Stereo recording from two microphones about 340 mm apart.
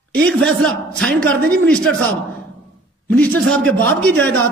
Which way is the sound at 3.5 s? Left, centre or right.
Centre.